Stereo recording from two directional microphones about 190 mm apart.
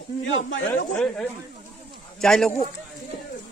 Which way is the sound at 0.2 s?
85° left.